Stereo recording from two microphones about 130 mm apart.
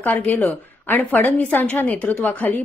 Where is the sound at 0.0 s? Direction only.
10° left (ahead or behind).